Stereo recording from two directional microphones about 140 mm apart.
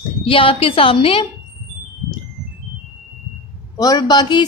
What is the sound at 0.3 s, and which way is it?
Speech, 40° left (ahead or behind).